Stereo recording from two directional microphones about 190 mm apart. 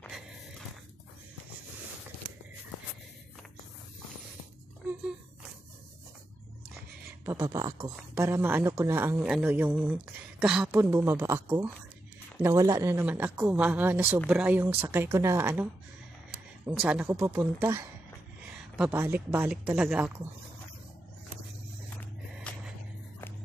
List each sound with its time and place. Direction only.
7.2 s a woman's voice: 15° right (ahead or behind)
10.7 s a woman's voice: 10° right (ahead or behind)
16.8 s a woman's voice: 5° right (ahead or behind)
22.5 s a sound: 5° left (ahead or behind)